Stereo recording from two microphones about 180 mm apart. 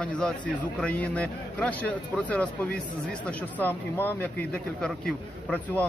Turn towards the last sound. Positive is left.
turn(degrees=5)  # may be behind; listen again after turning